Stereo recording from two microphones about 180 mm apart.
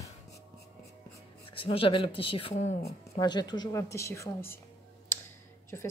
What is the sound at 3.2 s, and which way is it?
Speech, 25° left (ahead or behind).